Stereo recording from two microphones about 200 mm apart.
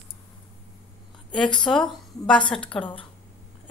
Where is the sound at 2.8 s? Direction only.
25° left (ahead or behind).